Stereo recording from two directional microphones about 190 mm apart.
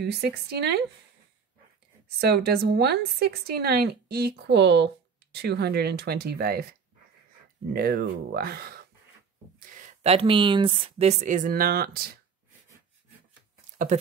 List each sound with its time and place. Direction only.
0.0 s a woman's voice: 55° right (ahead or behind)
2.0 s a woman's voice: 60° right (ahead or behind)
7.7 s a woman's voice: 55° right (ahead or behind)
9.6 s speech: 40° right (ahead or behind)